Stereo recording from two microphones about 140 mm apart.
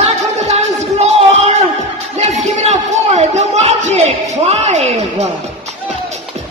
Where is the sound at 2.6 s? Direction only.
50° right (ahead or behind).